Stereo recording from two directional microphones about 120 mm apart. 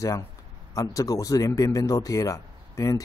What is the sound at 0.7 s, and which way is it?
Speech, 30° left (ahead or behind).